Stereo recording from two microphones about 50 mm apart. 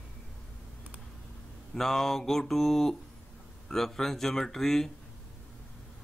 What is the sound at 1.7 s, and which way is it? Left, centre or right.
Mantra, centre.